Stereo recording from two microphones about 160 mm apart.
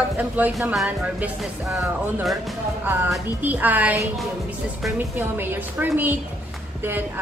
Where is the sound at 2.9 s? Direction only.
10° right (ahead or behind).